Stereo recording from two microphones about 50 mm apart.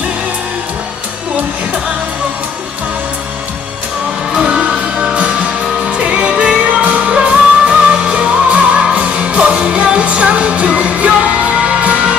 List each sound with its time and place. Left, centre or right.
5.1 s music: right
6.8 s music: right